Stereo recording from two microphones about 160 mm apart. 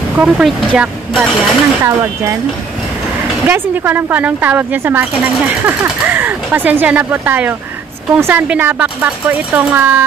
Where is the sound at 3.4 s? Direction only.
10° right (ahead or behind).